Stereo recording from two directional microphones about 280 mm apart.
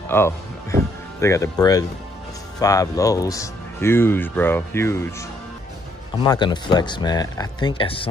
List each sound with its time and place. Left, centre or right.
0.1 s speech: centre
6.2 s speech: centre